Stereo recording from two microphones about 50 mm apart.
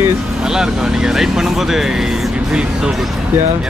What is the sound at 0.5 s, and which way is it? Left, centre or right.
Speech, centre.